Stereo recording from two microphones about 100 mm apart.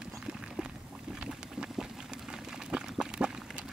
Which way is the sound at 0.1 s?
10° right (ahead or behind).